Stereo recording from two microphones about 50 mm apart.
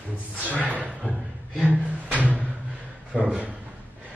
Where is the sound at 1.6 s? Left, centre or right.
Right.